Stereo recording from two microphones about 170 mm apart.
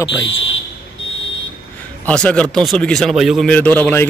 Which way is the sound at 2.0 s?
5° left (ahead or behind).